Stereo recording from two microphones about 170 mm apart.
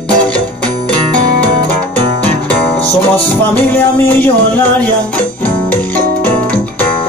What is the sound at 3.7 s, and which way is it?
Music, 10° left (ahead or behind).